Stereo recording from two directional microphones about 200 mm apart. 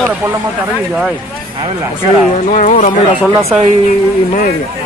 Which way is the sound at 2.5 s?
35° left (ahead or behind).